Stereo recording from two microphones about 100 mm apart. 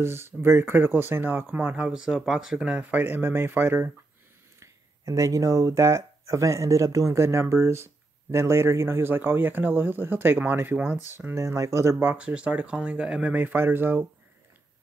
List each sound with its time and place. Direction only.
0.0 s speech: 25° right (ahead or behind)
12.2 s speech: 15° right (ahead or behind)